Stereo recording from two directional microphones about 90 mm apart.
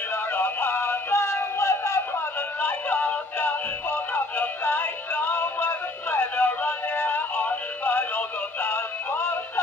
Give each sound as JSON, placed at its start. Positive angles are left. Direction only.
{"t": 0.1, "sound": "music", "side_deg": 25}
{"t": 2.6, "sound": "music", "side_deg": 20}
{"t": 8.6, "sound": "synthetic singing", "side_deg": 25}